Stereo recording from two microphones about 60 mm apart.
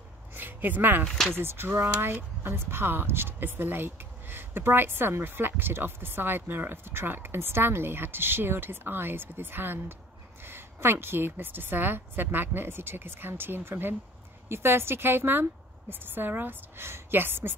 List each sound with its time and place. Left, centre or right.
0.3 s a sound: right
1.0 s speech: centre
1.3 s speech: right